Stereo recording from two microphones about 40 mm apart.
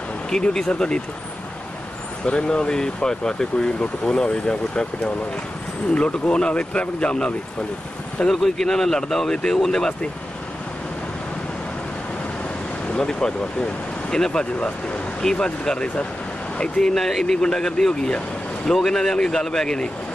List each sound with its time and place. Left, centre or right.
0.4 s speech: left
2.2 s speech: left
3.5 s speech: left
8.3 s speech: centre
12.9 s speech: left
16.8 s speech: centre
17.4 s speech: centre